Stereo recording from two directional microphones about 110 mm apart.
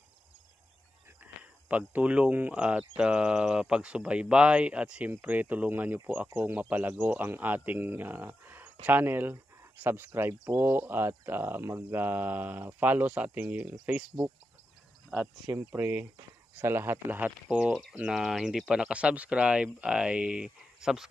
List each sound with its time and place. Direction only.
1.2 s speech: 15° right (ahead or behind)
15.5 s speech: 20° right (ahead or behind); by 21.1 s 5° right (ahead or behind)